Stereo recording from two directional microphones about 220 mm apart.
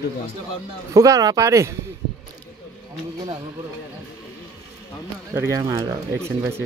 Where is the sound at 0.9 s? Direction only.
15° right (ahead or behind).